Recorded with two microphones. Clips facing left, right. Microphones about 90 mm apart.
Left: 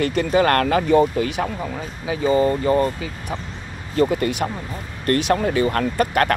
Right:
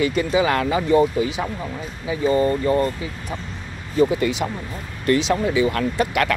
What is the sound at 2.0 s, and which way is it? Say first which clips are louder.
Speech: left 1 dB; 90° left.